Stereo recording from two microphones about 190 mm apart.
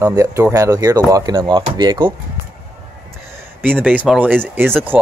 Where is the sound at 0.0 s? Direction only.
20° right (ahead or behind).